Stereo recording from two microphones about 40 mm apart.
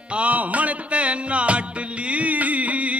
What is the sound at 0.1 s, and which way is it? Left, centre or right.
Music, right.